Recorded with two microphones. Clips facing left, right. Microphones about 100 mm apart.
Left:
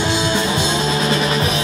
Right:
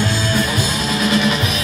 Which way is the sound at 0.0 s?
20° left (ahead or behind).